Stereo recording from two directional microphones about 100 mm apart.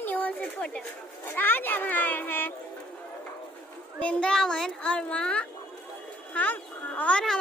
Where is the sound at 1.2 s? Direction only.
20° left (ahead or behind).